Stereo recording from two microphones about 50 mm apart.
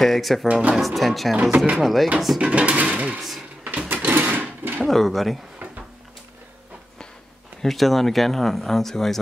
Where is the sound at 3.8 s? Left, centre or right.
Right.